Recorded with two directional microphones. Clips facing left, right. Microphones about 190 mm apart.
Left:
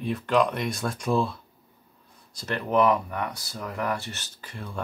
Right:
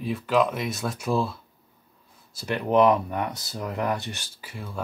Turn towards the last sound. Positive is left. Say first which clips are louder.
# even
turn(degrees=-5)  # may be behind; listen again after turning